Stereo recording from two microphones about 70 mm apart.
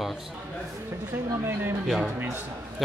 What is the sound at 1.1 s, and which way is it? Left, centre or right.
Speech, right.